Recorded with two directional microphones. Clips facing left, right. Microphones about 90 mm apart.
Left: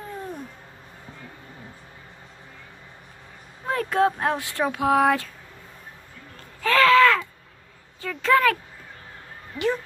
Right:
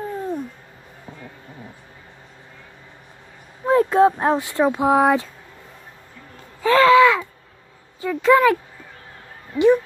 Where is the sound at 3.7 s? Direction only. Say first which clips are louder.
Right 7 dB; 25° right (ahead or behind).